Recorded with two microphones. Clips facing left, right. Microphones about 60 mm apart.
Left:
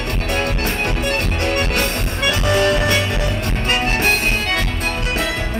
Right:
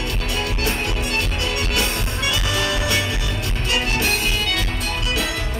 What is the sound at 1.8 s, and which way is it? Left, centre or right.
Music, left.